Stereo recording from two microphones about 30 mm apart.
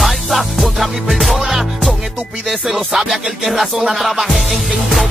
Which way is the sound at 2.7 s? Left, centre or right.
Centre.